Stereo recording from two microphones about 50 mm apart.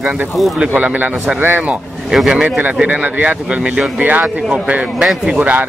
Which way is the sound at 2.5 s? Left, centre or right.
Right.